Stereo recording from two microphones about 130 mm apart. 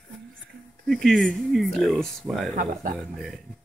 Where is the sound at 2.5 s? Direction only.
90° right.